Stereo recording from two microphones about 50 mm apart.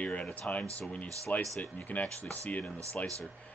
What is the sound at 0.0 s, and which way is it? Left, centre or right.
Speech, left.